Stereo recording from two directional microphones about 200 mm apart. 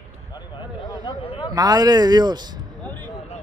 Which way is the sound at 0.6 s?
20° left (ahead or behind).